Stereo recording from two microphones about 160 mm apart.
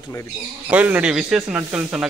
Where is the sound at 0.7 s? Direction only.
10° right (ahead or behind).